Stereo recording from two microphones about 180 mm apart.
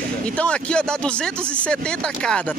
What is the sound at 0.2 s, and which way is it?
Speech, 5° left (ahead or behind).